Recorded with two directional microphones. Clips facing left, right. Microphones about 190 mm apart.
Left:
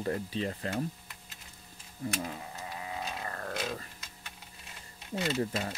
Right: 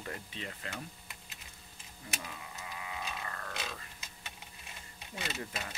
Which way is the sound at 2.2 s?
40° left (ahead or behind).